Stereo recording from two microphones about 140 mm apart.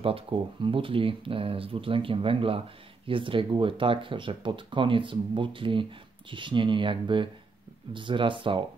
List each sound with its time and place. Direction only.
0.0 s speech: 40° right (ahead or behind)